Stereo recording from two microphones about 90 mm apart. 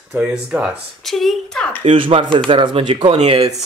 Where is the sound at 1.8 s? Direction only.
85° right.